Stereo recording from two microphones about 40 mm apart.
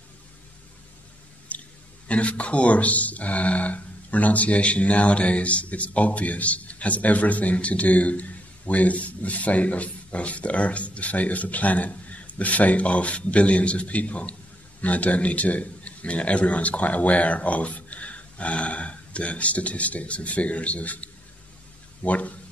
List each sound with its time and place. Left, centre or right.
2.0 s speech: left